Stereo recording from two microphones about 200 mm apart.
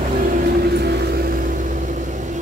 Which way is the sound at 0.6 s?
55° right (ahead or behind).